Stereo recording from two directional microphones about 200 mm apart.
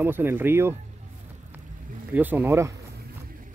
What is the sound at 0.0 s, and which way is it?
Speech, 10° right (ahead or behind).